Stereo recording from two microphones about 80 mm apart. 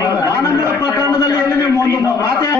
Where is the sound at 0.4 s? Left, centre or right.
Left.